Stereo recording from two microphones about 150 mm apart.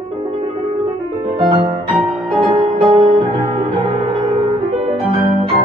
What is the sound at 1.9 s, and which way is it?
Music, centre (ahead or behind).